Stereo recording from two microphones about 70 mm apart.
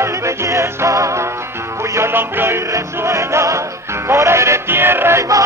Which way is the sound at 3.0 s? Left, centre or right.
Right.